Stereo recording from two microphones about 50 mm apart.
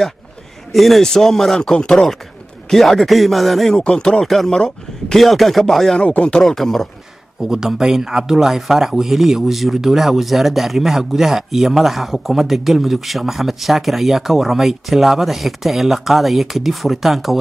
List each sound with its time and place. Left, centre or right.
0.7 s speech: centre
1.6 s chopping: centre
1.9 s speech: centre
3.7 s speech: centre
4.3 s speech: centre
5.9 s chopping: left
6.4 s speech: centre
7.4 s speech: centre